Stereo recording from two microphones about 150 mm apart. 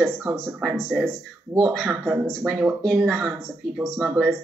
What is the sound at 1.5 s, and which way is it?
Speech, 15° right (ahead or behind).